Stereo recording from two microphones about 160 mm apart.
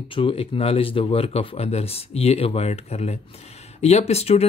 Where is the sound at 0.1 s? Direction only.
35° left (ahead or behind).